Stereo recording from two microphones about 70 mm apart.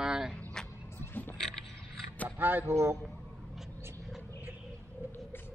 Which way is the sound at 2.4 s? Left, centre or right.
Right.